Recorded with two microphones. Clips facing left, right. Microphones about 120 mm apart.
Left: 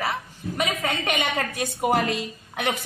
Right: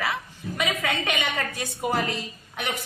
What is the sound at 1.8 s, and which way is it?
Speech, 75° left (ahead or behind).